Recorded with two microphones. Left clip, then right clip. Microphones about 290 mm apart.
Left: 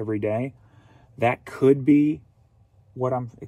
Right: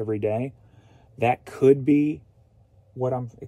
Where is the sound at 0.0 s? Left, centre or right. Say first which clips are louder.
Even; centre.